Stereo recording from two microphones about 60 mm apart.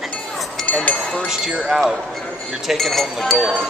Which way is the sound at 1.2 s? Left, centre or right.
Centre.